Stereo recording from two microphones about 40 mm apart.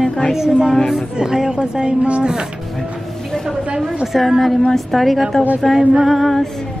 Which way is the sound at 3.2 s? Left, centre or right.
Centre.